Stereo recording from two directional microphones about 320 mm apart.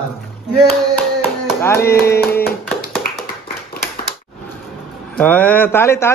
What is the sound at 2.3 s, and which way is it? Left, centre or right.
Tap, left.